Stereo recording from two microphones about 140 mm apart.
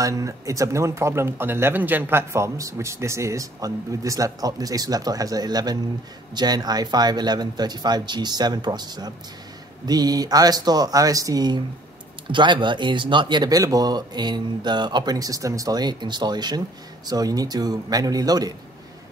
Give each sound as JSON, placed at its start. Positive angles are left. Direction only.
{"t": 0.0, "sound": "speech", "side_deg": -25}